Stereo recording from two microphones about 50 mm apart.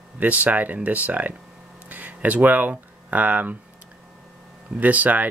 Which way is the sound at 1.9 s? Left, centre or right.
Right.